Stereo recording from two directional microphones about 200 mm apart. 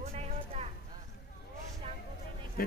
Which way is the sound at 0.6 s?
30° right (ahead or behind).